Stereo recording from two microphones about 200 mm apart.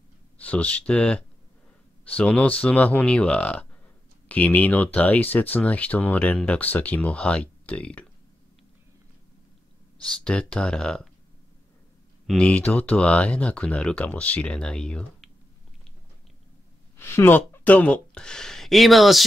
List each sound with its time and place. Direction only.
0.4 s speech: 5° left (ahead or behind)
10.2 s speech: 5° left (ahead or behind)
12.3 s speech: 5° left (ahead or behind)
16.9 s speech: 10° left (ahead or behind)